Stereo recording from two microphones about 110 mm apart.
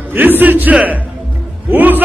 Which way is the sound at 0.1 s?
15° right (ahead or behind).